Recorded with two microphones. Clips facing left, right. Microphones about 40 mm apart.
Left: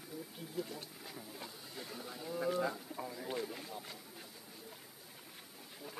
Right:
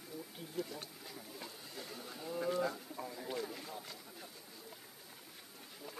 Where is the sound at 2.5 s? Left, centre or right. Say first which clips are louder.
Even; centre.